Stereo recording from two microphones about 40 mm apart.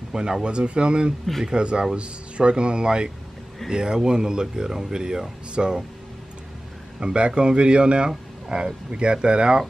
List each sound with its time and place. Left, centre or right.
0.1 s speech: centre
7.0 s speech: right